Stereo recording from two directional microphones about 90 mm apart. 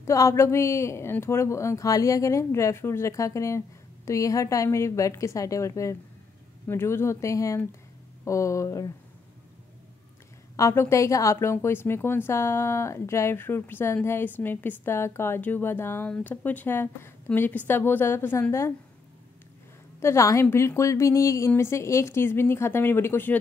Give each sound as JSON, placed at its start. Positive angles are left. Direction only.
{"t": 0.0, "sound": "a woman's voice", "side_deg": 35}
{"t": 10.5, "sound": "a woman's voice", "side_deg": 30}
{"t": 20.0, "sound": "a woman's voice", "side_deg": 30}